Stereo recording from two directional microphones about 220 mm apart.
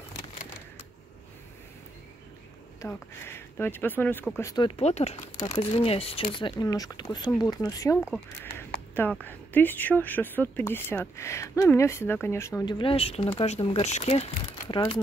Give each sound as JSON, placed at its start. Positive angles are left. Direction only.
{"t": 2.8, "sound": "speech", "side_deg": 10}
{"t": 8.5, "sound": "a sound", "side_deg": 10}
{"t": 9.2, "sound": "speech", "side_deg": 10}